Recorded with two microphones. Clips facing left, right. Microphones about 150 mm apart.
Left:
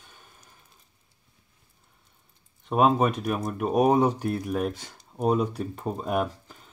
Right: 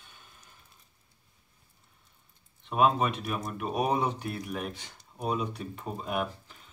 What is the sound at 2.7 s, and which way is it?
Speech, 40° left (ahead or behind).